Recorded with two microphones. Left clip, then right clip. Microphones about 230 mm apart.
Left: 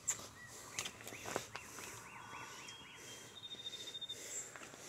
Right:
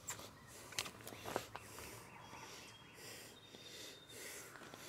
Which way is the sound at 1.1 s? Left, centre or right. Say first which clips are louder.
Even; centre.